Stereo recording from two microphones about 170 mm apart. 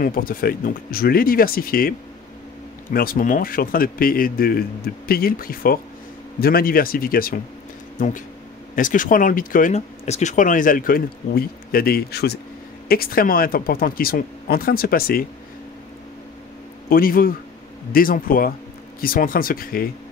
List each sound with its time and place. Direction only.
0.0 s speech: 55° left (ahead or behind)
16.9 s speech: 60° left (ahead or behind)